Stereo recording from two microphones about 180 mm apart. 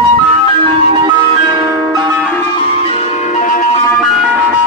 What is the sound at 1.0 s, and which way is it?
Ice cream truck, 25° right (ahead or behind).